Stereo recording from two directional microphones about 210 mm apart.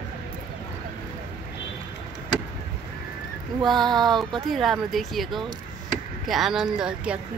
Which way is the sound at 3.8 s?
20° right (ahead or behind).